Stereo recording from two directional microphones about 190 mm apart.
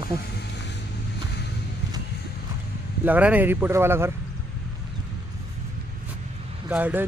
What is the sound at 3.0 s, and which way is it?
Speech, 10° right (ahead or behind).